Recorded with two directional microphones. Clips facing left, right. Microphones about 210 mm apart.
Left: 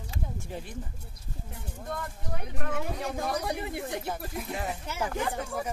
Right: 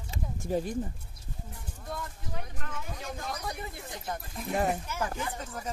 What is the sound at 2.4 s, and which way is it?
Speech, 70° left (ahead or behind).